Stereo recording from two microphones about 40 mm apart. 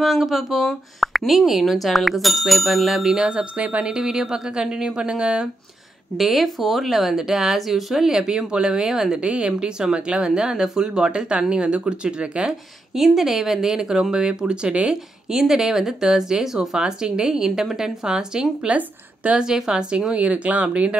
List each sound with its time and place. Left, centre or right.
0.0 s speech: centre
3.2 s speech: centre
3.5 s speech: right
3.8 s speech: centre
6.1 s speech: centre
9.2 s speech: right
12.9 s speech: centre; by 14.9 s right
14.9 s speech: centre
18.7 s a woman's voice: right
19.3 s speech: centre
20.2 s speech: right